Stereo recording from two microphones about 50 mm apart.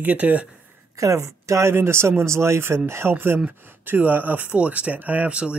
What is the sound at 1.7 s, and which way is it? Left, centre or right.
Speech, right.